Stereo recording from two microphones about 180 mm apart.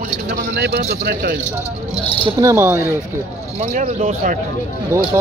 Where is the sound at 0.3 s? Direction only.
60° right (ahead or behind).